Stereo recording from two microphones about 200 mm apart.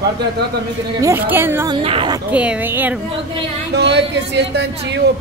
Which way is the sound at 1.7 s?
25° right (ahead or behind).